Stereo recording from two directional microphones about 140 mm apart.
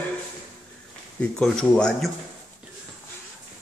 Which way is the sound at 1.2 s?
5° left (ahead or behind).